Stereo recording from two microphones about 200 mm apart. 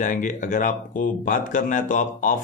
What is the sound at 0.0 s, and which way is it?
A man's voice, 40° left (ahead or behind).